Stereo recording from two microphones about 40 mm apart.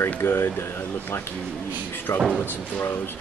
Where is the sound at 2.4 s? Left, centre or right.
Left.